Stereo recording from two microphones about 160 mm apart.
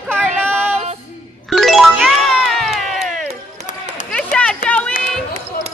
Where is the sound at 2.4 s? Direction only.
Centre (ahead or behind).